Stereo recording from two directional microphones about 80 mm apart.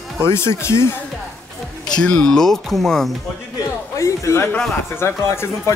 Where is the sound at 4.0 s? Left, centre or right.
Left.